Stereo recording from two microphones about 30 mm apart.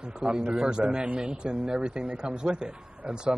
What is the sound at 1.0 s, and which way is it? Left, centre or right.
Speech, right.